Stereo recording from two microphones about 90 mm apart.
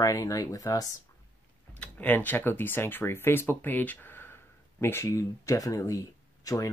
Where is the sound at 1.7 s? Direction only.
15° left (ahead or behind).